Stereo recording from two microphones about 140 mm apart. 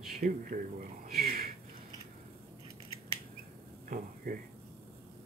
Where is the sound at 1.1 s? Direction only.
90° right.